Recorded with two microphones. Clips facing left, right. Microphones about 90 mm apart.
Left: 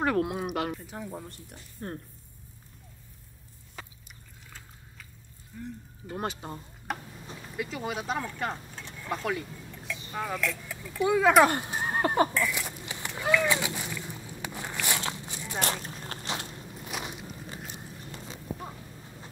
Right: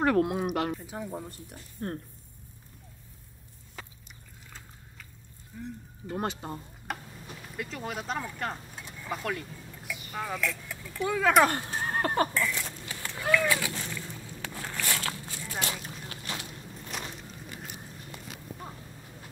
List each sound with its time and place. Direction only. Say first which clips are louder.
0.0 s speech: right 2 dB; 5° left (ahead or behind)
1.8 s speech: right 3 dB; 10° left (ahead or behind)
5.6 s speech: even; centre (ahead or behind)
8.7 s vehicle: left 2 dB; 5° right (ahead or behind)
10.1 s speech: left 1 dB; centre (ahead or behind)
11.4 s horse: left 2 dB; 15° left (ahead or behind)
15.6 s a sound: left 5 dB; 45° left (ahead or behind)
16.8 s a sound: left 2 dB; 15° left (ahead or behind)